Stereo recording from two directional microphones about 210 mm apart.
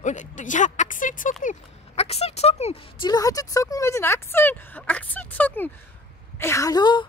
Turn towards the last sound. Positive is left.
turn(degrees=20)  # may be behind; listen again after turning